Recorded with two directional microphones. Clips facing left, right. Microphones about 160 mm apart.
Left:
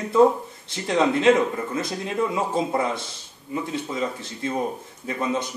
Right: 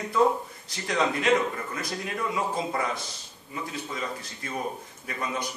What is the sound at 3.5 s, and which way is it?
A man's voice, 25° left (ahead or behind).